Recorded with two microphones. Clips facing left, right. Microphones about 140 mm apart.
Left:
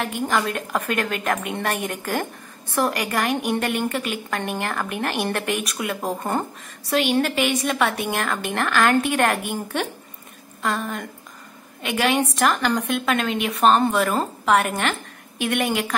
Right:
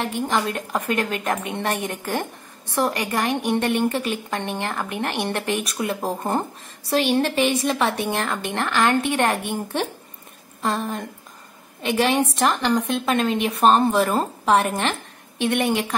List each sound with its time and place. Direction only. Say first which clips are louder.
0.0 s a woman's voice: even; 25° right (ahead or behind)